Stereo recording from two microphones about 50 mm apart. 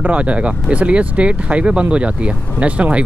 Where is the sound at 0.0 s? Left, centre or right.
Right.